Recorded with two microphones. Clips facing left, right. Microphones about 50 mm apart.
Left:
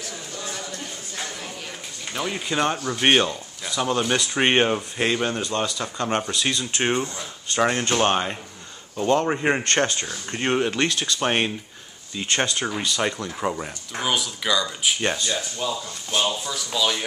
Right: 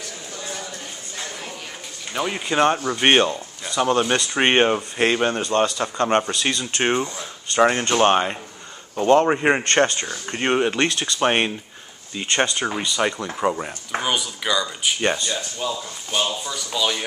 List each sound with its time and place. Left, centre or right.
0.4 s a sound: centre
2.1 s speech: centre; by 11.2 s right
11.2 s speech: centre
15.0 s speech: centre